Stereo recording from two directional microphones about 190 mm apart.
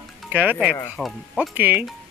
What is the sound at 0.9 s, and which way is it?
Speech, centre (ahead or behind).